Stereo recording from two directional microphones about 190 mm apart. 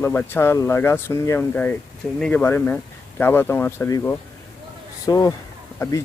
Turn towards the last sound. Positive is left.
turn(degrees=15)  # may be behind; listen again after turning